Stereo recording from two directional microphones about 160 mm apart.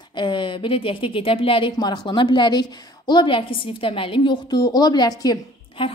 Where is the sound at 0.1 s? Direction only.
30° left (ahead or behind).